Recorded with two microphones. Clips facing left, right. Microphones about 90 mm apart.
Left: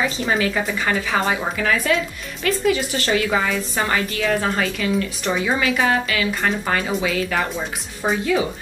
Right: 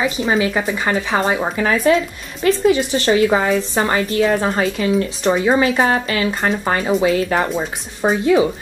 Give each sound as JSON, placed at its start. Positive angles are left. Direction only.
{"t": 0.0, "sound": "speech", "side_deg": -5}
{"t": 0.4, "sound": "speech", "side_deg": -20}
{"t": 1.1, "sound": "a woman's voice", "side_deg": -30}